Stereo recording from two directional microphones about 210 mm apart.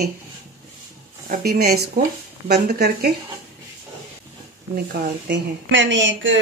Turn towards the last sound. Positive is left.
turn(degrees=-60)  # may be behind; listen again after turning